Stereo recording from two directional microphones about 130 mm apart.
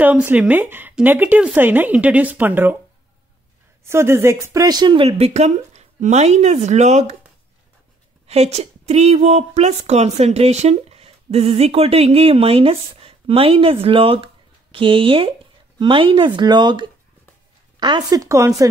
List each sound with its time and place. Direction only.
0.0 s speech: 15° right (ahead or behind)
3.8 s a woman's voice: 20° right (ahead or behind); by 5.0 s 35° right (ahead or behind)
5.0 s speech: 50° right (ahead or behind)
8.3 s a woman's voice: 55° right (ahead or behind); by 18.5 s 25° right (ahead or behind)